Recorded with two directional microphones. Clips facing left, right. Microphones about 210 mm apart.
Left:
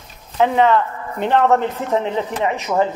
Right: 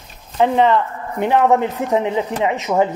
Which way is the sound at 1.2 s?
10° right (ahead or behind).